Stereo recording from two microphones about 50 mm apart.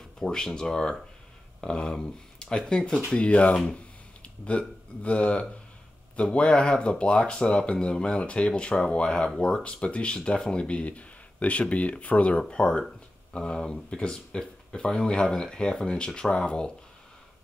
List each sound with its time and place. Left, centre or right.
0.2 s speech: centre
3.2 s speech: left